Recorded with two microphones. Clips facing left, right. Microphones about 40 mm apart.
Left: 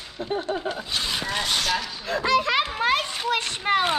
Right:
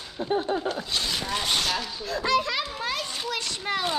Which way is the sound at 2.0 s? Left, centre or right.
Left.